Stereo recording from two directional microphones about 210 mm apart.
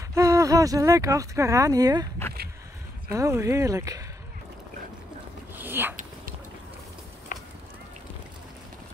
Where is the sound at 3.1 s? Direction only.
15° right (ahead or behind).